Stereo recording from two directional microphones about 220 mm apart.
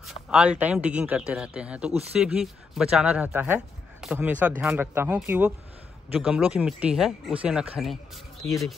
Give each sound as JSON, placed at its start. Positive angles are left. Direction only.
{"t": 0.0, "sound": "a man's voice", "side_deg": -5}